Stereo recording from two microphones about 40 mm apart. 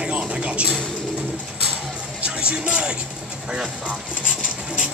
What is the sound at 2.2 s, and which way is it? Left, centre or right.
Music, right.